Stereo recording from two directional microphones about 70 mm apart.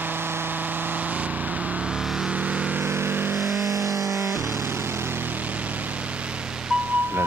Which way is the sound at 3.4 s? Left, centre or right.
Centre.